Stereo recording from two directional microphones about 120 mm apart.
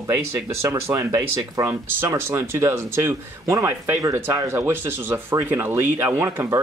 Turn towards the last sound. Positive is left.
turn(degrees=-20)  # may be behind; listen again after turning